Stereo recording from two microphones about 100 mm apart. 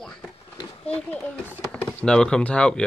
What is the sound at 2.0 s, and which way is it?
Child singing, 10° left (ahead or behind).